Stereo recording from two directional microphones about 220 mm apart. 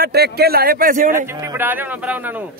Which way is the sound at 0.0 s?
45° right (ahead or behind).